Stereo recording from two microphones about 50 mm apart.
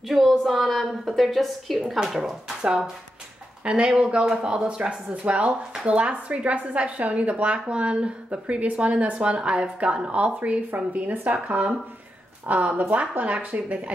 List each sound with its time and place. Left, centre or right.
0.1 s a woman's voice: centre; by 12.8 s right
12.8 s a woman's voice: centre
13.1 s a woman's voice: right